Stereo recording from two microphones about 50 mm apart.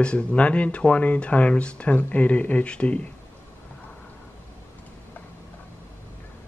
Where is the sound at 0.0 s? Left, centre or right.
Left.